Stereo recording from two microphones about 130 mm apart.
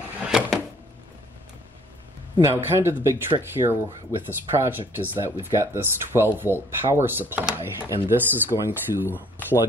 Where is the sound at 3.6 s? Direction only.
35° right (ahead or behind).